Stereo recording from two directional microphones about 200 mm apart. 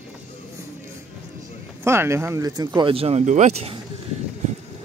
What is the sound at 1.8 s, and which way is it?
Speech, 15° right (ahead or behind).